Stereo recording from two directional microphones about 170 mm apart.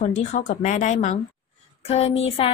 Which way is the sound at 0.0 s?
45° left (ahead or behind).